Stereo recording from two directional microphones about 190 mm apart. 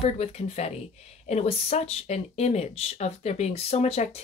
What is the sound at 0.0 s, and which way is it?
Speech, 35° left (ahead or behind).